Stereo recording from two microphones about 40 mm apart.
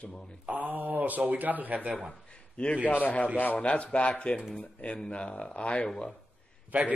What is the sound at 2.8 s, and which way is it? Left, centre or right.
Speech, left.